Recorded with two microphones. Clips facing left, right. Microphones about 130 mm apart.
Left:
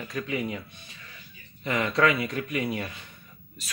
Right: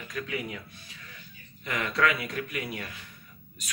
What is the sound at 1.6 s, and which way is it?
Speech, 25° left (ahead or behind).